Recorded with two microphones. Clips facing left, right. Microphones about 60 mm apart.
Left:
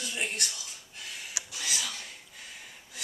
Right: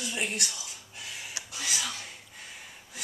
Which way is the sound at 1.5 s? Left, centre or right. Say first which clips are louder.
Right 2 dB; centre.